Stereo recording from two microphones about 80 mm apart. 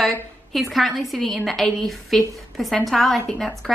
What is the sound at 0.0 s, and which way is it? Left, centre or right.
A woman's voice, centre.